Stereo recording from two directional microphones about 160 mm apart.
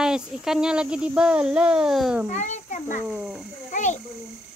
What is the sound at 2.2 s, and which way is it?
Speech, 45° left (ahead or behind).